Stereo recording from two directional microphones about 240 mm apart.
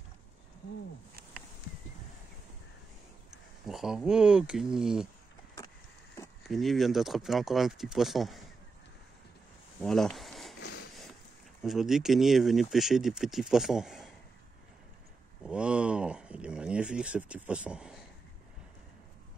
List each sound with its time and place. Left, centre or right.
3.6 s speech: centre
6.4 s speech: centre
9.8 s speech: centre
10.6 s a sound: left
11.6 s speech: centre
15.4 s speech: centre